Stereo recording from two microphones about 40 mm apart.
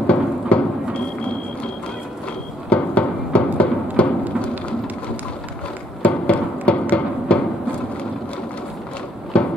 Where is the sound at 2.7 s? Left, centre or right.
Left.